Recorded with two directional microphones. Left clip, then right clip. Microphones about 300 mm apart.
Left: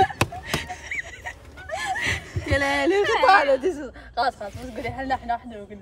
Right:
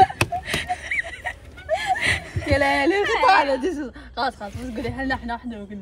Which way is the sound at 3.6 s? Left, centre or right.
Right.